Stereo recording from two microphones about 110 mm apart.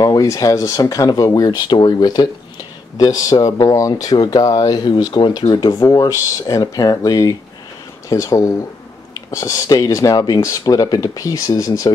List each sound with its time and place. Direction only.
0.0 s speech: 35° left (ahead or behind)